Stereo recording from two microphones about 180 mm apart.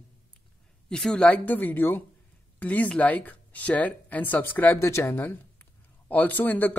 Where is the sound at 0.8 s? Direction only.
5° left (ahead or behind).